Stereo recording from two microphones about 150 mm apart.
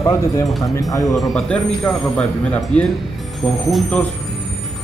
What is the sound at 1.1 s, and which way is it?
Speech, 5° left (ahead or behind).